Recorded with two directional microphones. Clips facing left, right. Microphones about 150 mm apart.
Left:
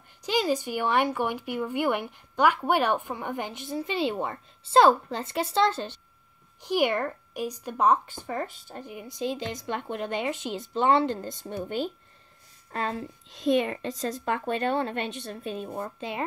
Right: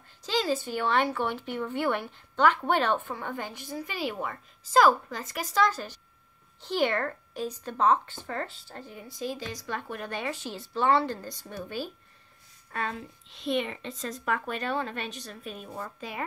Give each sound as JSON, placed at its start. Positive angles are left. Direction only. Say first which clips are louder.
{"t": 0.2, "sound": "speech", "louder": "left 2 dB", "side_deg": 15}
{"t": 6.6, "sound": "speech", "louder": "left 2 dB", "side_deg": 15}